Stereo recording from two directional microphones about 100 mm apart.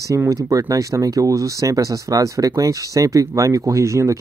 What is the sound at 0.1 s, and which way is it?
Speech, 30° right (ahead or behind).